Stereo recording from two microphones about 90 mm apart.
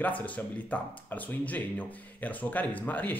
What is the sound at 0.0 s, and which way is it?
Speech, 15° left (ahead or behind).